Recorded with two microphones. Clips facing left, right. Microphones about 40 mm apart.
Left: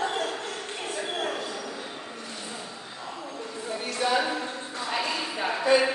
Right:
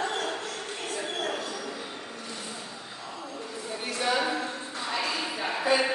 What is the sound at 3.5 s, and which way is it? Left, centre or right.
Music, left.